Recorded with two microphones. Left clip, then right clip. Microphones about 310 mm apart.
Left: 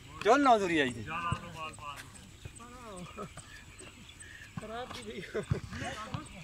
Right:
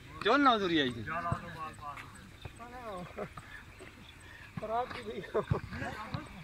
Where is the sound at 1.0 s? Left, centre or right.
Centre.